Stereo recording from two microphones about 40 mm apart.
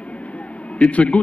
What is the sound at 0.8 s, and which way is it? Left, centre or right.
Speech, left.